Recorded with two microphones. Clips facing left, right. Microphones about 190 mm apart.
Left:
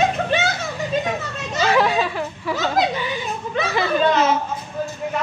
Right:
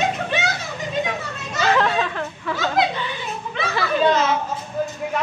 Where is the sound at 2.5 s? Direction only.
15° left (ahead or behind).